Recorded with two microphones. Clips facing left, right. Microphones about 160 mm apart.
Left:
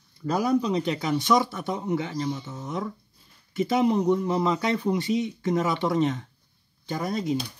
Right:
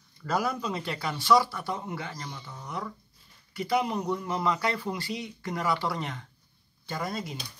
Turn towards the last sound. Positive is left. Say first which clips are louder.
# left 7 dB
turn(degrees=20)  # may be behind; listen again after turning